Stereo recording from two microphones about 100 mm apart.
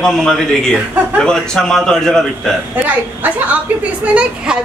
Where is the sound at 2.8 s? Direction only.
15° right (ahead or behind).